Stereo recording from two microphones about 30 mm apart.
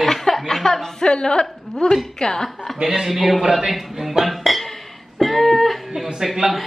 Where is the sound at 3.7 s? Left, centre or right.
Centre.